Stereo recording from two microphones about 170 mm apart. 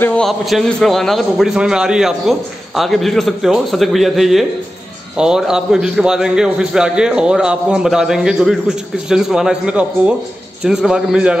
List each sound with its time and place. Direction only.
0.0 s a man's voice: 5° left (ahead or behind)